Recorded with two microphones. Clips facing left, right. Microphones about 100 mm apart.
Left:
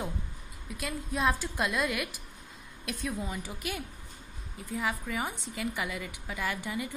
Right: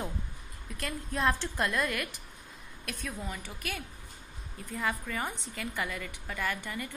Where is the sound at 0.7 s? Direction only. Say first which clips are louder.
Left 1 dB; 10° left (ahead or behind).